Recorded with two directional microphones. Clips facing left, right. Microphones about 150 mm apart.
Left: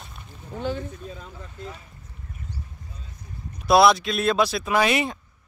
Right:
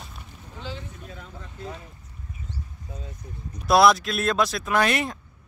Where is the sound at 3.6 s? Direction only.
Centre (ahead or behind).